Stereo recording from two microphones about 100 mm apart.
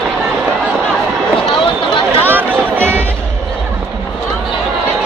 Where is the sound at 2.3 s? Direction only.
20° right (ahead or behind).